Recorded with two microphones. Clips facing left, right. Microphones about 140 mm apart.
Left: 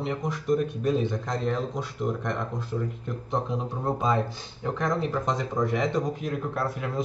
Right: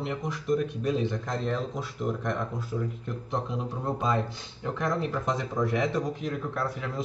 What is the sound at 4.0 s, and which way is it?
Speech, centre (ahead or behind).